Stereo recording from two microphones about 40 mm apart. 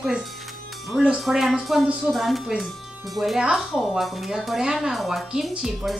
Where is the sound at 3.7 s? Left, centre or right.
Centre.